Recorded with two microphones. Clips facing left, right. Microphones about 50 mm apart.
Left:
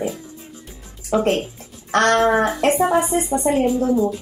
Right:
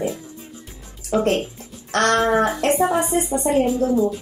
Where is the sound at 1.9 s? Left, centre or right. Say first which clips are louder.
Left 2 dB; centre.